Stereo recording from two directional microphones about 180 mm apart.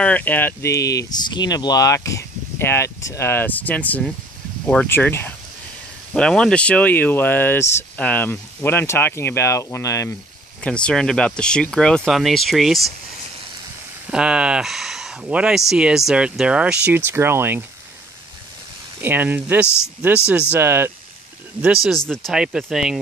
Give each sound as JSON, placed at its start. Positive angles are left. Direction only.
{"t": 0.0, "sound": "speech", "side_deg": 10}
{"t": 10.6, "sound": "speech", "side_deg": 5}
{"t": 14.1, "sound": "speech", "side_deg": -5}
{"t": 18.9, "sound": "speech", "side_deg": -10}
{"t": 21.8, "sound": "speech", "side_deg": 5}